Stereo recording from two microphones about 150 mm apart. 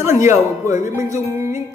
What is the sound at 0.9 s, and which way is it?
Music, 20° right (ahead or behind).